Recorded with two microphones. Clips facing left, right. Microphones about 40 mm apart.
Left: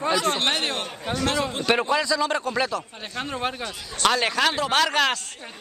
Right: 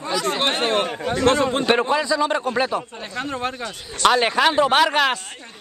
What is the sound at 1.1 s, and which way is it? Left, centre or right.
Speech, right.